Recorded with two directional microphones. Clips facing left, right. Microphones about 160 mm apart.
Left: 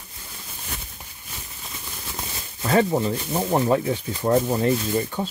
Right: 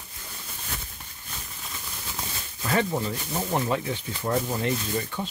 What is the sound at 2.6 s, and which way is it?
Speech, 35° left (ahead or behind).